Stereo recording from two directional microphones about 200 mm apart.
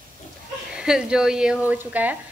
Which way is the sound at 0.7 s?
5° right (ahead or behind).